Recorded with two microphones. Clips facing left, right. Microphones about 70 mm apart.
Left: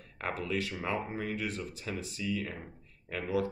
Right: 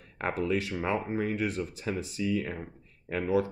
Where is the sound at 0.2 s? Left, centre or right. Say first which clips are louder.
Right 5 dB; right.